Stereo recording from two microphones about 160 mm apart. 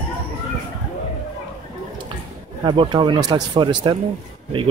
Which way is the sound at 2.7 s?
30° right (ahead or behind).